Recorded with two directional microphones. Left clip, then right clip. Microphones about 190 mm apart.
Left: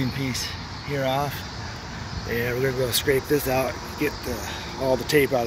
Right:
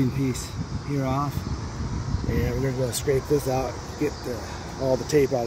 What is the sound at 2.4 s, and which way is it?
Speech, 5° right (ahead or behind).